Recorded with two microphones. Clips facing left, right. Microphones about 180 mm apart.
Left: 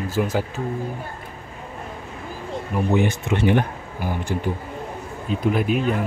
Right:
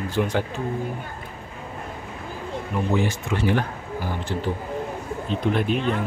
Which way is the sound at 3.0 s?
20° left (ahead or behind).